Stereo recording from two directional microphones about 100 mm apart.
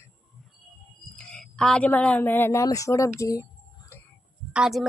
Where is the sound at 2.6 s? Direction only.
35° left (ahead or behind).